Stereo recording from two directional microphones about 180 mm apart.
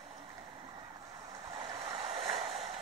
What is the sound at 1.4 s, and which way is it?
Vehicle, 20° right (ahead or behind).